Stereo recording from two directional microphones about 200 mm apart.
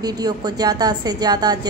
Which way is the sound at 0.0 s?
20° right (ahead or behind).